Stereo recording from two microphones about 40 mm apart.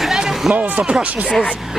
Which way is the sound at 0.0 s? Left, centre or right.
Centre.